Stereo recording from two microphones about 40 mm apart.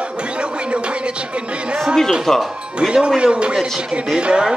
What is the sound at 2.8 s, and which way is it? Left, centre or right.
Speech, right.